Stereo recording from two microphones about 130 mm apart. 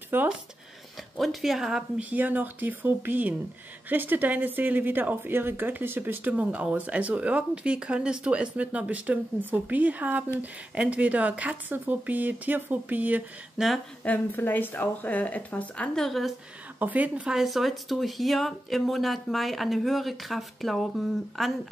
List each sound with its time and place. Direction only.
0.1 s speech: 15° right (ahead or behind)
1.1 s a woman's voice: centre (ahead or behind)
14.0 s speech: 15° left (ahead or behind)
16.8 s speech: 10° right (ahead or behind)